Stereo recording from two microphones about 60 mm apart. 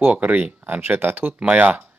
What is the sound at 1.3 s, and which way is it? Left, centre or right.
Speech, right.